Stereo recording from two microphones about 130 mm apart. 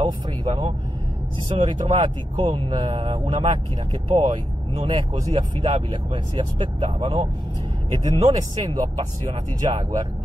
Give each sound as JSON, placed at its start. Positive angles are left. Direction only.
{"t": 0.0, "sound": "speech", "side_deg": -35}